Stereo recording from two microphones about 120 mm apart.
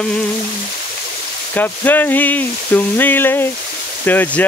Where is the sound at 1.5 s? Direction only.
15° left (ahead or behind).